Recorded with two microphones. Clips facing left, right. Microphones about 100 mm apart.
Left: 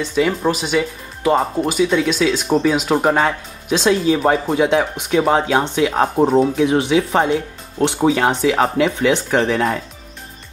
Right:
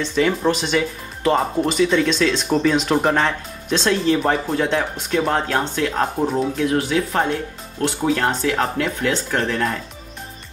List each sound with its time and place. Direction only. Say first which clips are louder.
0.0 s speech: left 1 dB; 5° left (ahead or behind)
6.1 s speech: left 6 dB; 30° left (ahead or behind)
8.0 s speech: left 4 dB; 10° left (ahead or behind)